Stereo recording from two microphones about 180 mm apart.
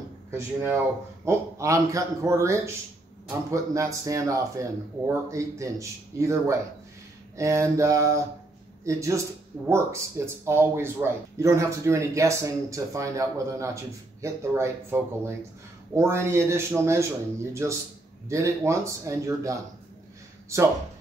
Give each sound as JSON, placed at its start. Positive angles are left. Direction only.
{"t": 1.2, "sound": "speech", "side_deg": -15}